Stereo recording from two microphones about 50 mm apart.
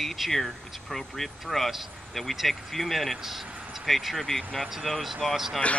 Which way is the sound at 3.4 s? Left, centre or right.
Right.